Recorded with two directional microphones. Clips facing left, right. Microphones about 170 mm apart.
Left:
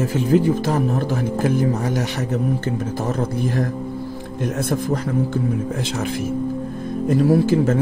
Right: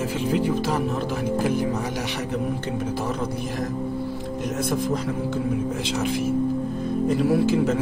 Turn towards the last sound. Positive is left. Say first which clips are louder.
# left 4 dB
turn(degrees=45)  # may be behind; listen again after turning